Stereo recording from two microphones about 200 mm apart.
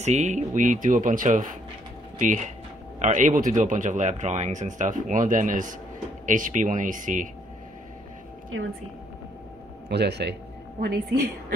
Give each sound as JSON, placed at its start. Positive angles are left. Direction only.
{"t": 0.0, "sound": "speech", "side_deg": -35}
{"t": 8.5, "sound": "speech", "side_deg": -80}
{"t": 9.8, "sound": "a woman's voice", "side_deg": -55}